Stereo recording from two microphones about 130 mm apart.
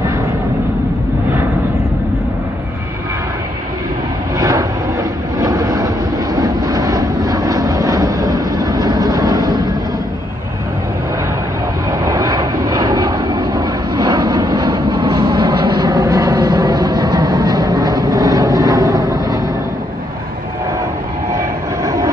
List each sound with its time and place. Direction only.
4.4 s vehicle: 25° right (ahead or behind)
12.0 s vehicle: 25° right (ahead or behind)
21.8 s vehicle: 25° right (ahead or behind)